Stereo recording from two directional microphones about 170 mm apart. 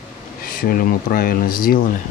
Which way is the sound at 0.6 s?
60° left (ahead or behind).